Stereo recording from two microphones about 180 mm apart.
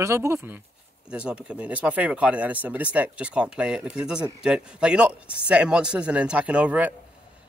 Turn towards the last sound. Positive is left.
turn(degrees=-10)  # may be behind; listen again after turning